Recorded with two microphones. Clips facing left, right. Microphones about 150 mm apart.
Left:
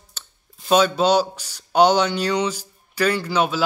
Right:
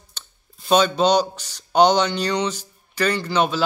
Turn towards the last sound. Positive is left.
turn(degrees=5)  # may be behind; listen again after turning